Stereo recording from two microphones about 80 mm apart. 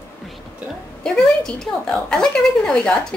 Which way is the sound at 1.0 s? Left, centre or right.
Centre.